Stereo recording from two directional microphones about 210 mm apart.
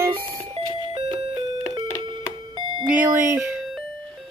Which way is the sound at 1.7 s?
20° right (ahead or behind).